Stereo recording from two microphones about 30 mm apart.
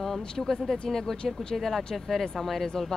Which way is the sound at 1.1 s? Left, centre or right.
Left.